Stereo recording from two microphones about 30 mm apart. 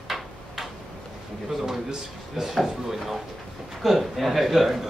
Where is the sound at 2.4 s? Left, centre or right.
Centre.